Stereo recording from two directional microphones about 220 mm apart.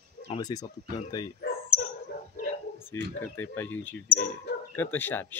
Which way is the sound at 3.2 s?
10° left (ahead or behind).